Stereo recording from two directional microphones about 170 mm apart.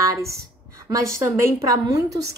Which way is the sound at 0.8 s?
15° right (ahead or behind).